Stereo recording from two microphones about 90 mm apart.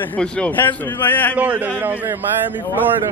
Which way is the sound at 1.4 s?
20° right (ahead or behind).